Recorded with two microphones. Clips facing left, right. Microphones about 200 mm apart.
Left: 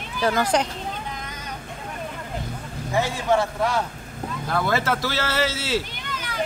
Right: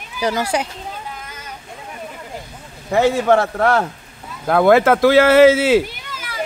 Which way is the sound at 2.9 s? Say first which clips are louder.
Right 7 dB; 65° right (ahead or behind).